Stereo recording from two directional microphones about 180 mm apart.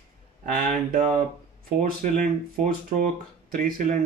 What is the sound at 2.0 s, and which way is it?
Speech, 50° right (ahead or behind).